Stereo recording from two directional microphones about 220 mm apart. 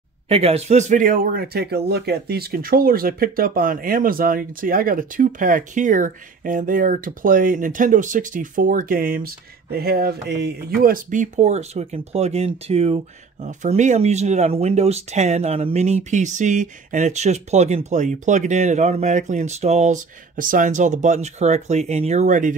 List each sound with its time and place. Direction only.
0.3 s speech: 25° right (ahead or behind)